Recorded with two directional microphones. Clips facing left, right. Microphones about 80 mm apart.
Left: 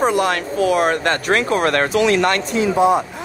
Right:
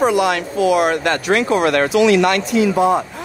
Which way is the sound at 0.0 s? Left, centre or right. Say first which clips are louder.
Right 2 dB; left.